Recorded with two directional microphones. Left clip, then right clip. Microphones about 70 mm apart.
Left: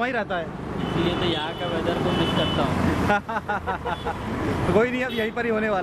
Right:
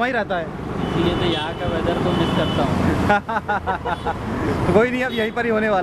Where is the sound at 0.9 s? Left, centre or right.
Centre.